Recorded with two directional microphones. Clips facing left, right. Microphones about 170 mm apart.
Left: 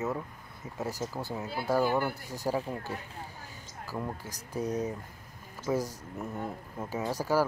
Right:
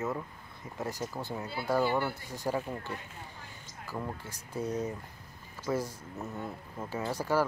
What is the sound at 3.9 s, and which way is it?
Speech, 10° left (ahead or behind).